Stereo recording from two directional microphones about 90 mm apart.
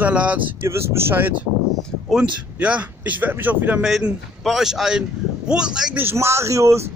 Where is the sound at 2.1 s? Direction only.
10° right (ahead or behind).